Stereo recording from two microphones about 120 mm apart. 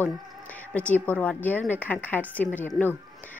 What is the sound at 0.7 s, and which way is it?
A woman's voice, 15° left (ahead or behind).